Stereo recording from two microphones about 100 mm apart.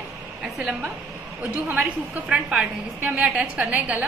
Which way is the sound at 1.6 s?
15° right (ahead or behind).